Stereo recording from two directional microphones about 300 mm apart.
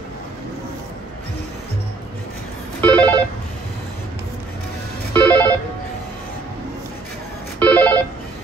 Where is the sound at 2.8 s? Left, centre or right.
Centre.